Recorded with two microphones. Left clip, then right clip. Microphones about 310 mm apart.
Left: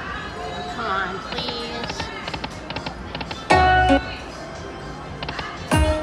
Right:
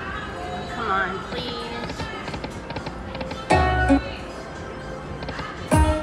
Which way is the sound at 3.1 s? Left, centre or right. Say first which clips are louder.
Left 3 dB; centre.